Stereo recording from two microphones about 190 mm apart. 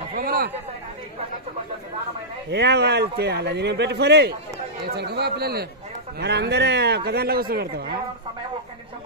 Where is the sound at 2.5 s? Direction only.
60° right (ahead or behind).